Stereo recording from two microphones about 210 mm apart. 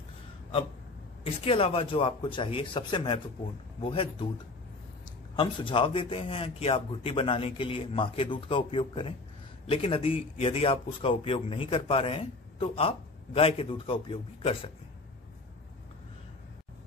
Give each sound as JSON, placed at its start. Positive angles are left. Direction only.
{"t": 1.2, "sound": "a man's voice", "side_deg": 25}
{"t": 5.3, "sound": "a man's voice", "side_deg": 25}